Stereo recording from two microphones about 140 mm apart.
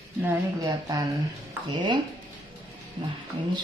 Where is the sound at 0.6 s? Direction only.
25° right (ahead or behind).